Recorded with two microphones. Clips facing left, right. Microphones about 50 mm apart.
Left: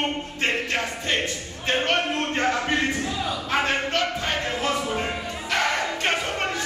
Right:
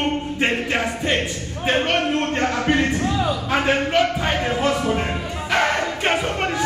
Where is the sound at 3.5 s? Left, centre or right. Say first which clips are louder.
Right 4 dB; centre.